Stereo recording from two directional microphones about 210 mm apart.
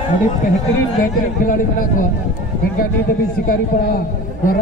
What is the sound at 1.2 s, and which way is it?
A man's voice, 40° left (ahead or behind).